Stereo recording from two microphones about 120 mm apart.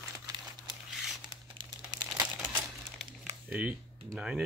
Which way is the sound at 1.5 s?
30° right (ahead or behind).